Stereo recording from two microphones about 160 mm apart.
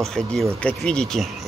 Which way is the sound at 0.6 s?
5° left (ahead or behind).